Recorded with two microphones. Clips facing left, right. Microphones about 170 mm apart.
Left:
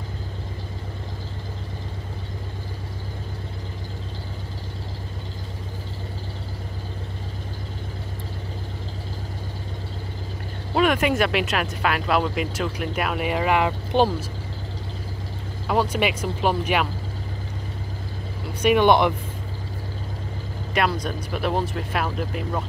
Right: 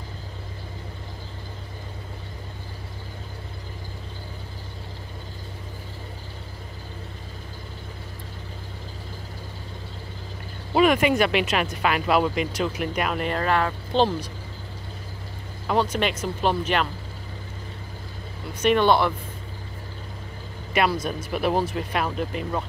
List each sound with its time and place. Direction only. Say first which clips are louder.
10.7 s speech: right 1 dB; centre (ahead or behind); by 14.1 s 15° left (ahead or behind)
15.6 s speech: left 1 dB; 5° left (ahead or behind)
18.6 s speech: left 2 dB; 10° left (ahead or behind)
20.7 s speech: right 1 dB; centre (ahead or behind)